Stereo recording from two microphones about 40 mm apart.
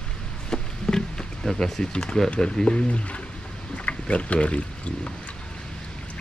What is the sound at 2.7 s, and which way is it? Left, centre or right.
Speech, left.